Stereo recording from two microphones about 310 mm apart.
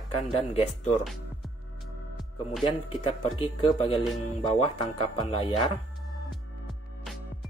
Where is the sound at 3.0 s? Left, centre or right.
Centre.